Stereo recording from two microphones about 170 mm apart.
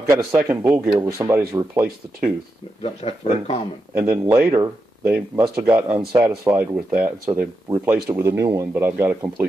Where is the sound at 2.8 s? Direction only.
35° left (ahead or behind).